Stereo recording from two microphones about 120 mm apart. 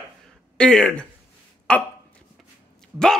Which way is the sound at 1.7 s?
10° left (ahead or behind).